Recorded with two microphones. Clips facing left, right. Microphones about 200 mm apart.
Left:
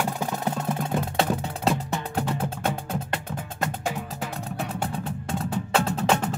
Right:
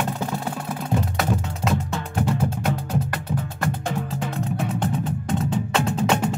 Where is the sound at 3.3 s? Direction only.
15° right (ahead or behind).